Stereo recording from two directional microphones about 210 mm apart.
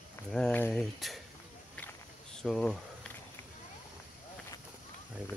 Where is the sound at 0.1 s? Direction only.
5° left (ahead or behind).